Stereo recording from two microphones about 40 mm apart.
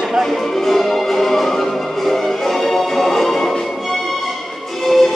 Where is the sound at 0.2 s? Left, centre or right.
Centre.